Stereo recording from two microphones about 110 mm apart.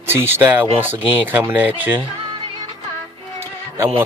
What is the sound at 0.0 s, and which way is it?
Speech, 20° right (ahead or behind).